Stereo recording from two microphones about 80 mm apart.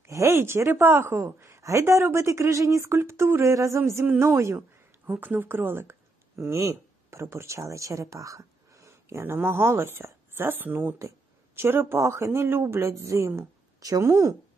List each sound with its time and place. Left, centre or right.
0.0 s a sound: right
0.4 s speech: right
4.6 s speech: right
11.0 s speech: right